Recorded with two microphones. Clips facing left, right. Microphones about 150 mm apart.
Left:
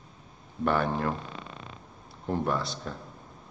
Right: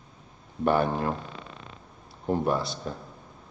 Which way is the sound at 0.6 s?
15° right (ahead or behind).